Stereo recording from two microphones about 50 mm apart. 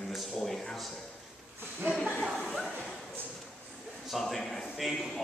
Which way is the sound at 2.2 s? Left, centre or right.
Centre.